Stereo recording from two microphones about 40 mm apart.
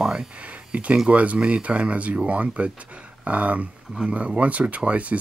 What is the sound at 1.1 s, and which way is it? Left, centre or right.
Speech, right.